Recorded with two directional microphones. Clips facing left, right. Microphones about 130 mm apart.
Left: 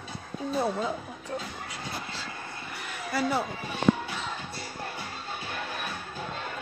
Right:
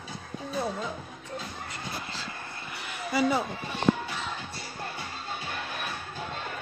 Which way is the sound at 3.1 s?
Centre (ahead or behind).